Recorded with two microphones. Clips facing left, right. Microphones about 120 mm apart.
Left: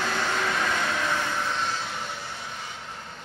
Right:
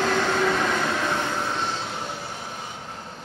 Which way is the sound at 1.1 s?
25° right (ahead or behind).